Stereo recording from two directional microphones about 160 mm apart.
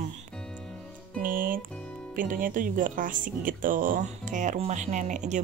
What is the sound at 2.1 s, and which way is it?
Speech, 60° right (ahead or behind).